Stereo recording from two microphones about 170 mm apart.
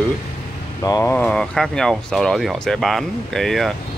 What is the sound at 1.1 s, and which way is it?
Speech, 5° left (ahead or behind).